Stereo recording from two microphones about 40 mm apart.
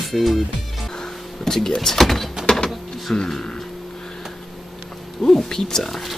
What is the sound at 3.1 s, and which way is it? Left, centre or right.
Speech, centre.